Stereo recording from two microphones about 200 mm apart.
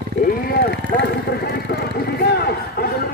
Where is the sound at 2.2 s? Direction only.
50° left (ahead or behind).